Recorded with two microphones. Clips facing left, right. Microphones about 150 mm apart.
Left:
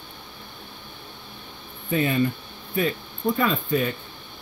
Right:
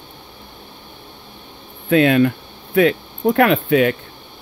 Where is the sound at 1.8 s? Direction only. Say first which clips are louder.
Right 9 dB; 90° right.